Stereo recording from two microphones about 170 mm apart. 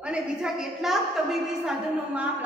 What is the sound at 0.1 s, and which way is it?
A woman's voice, 5° right (ahead or behind).